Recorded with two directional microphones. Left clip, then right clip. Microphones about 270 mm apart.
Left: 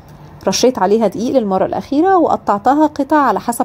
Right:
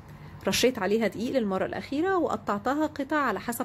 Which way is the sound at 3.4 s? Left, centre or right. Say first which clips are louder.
Left 15 dB; centre.